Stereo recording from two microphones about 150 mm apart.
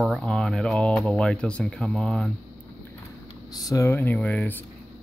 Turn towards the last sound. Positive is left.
turn(degrees=10)  # may be behind; listen again after turning